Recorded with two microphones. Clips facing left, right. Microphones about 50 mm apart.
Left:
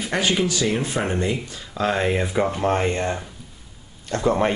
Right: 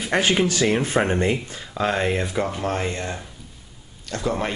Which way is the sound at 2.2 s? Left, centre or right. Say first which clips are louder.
Left 3 dB; centre.